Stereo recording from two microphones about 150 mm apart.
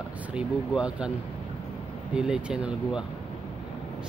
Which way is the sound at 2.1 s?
5° right (ahead or behind).